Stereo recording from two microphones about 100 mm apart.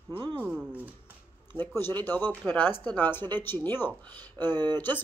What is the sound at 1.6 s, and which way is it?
Speech, 20° left (ahead or behind).